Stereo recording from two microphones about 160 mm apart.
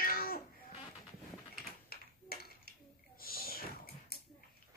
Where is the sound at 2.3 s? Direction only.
75° left (ahead or behind).